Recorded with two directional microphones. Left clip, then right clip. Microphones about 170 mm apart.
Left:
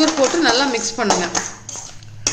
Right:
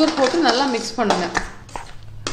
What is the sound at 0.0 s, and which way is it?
A woman's voice, 20° right (ahead or behind).